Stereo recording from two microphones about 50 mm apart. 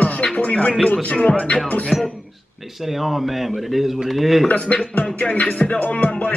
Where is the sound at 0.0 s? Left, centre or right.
Left.